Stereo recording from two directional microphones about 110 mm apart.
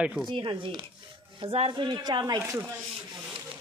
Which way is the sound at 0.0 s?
5° right (ahead or behind).